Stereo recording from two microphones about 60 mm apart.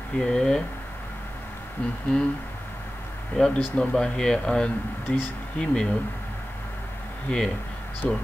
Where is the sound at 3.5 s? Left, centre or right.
Centre.